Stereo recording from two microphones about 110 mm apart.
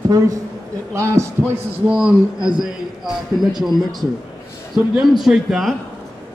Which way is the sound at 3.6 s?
Centre (ahead or behind).